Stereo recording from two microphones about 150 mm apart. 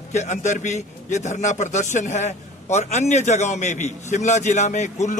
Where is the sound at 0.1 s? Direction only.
50° left (ahead or behind).